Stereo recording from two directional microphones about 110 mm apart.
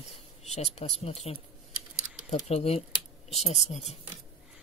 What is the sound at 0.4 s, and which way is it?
Speech, 80° left.